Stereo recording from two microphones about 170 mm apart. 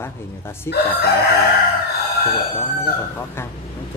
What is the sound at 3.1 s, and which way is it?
Speech, 15° left (ahead or behind).